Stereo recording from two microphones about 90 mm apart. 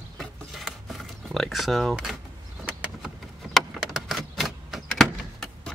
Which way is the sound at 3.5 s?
Centre (ahead or behind).